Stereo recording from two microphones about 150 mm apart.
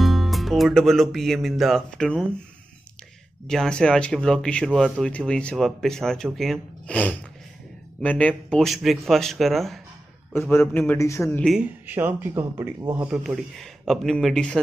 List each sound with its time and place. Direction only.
0.0 s speech: centre (ahead or behind)
3.4 s speech: 5° left (ahead or behind)
10.3 s a man's voice: 15° left (ahead or behind)
11.5 s speech: 15° right (ahead or behind)
12.8 s speech: 30° right (ahead or behind)
13.1 s speech: centre (ahead or behind)